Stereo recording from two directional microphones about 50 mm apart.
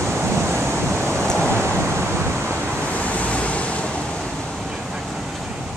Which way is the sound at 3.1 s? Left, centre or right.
Left.